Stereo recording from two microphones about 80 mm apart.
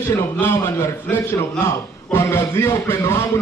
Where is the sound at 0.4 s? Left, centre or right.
Left.